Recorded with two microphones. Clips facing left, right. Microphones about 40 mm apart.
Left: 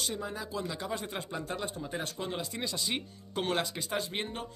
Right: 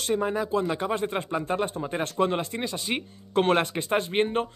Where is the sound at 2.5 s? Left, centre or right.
Right.